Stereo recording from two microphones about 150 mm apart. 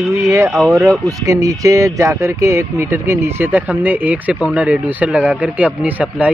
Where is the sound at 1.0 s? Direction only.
20° right (ahead or behind).